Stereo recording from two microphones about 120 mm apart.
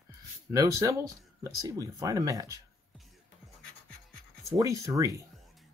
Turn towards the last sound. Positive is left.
turn(degrees=-30)  # may be behind; listen again after turning